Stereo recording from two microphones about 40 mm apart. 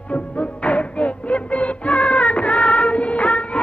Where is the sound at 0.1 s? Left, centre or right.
Left.